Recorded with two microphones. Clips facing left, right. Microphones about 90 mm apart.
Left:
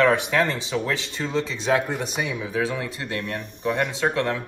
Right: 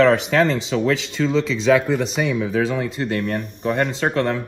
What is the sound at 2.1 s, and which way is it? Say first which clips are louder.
Speech: right 6 dB; 65° right (ahead or behind).